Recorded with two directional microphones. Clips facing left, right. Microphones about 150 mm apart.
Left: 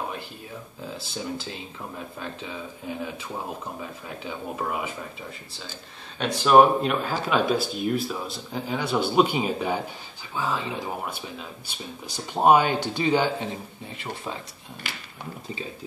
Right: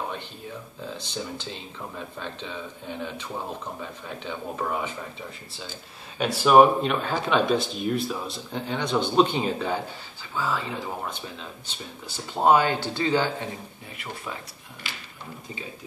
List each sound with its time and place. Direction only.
0.9 s speech: 5° left (ahead or behind)
4.2 s speech: 5° left (ahead or behind)
6.1 s speech: 5° right (ahead or behind); by 14.4 s 25° left (ahead or behind)